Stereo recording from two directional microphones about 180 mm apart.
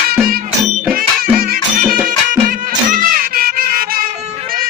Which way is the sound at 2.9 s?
55° right (ahead or behind).